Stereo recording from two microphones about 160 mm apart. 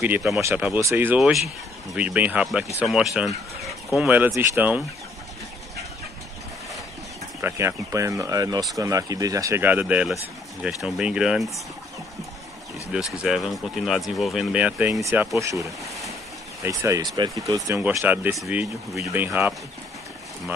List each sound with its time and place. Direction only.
0.0 s speech: 10° right (ahead or behind)
7.4 s speech: 15° right (ahead or behind); by 11.6 s centre (ahead or behind)
13.2 s speech: 5° right (ahead or behind)